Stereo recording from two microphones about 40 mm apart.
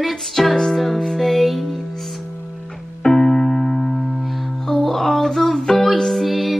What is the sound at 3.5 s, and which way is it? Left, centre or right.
Music, centre.